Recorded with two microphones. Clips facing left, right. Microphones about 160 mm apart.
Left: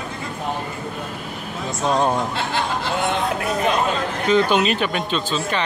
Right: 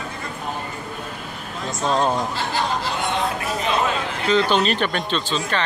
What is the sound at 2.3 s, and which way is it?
Speech, 60° left (ahead or behind).